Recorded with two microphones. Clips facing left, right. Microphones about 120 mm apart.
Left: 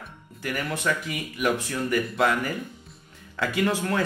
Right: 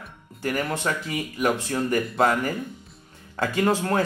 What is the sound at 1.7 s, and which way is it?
Speech, 35° right (ahead or behind).